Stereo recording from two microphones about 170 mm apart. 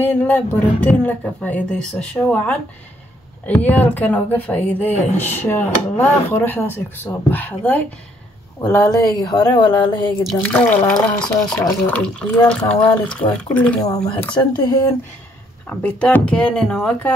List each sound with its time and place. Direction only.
0.0 s speech: 10° left (ahead or behind); by 10.1 s 30° left (ahead or behind)
10.5 s speech: 10° left (ahead or behind)
14.6 s speech: 20° left (ahead or behind)
15.6 s speech: 5° left (ahead or behind)